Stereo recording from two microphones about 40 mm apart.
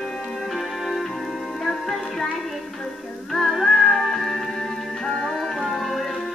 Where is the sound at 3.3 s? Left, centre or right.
Centre.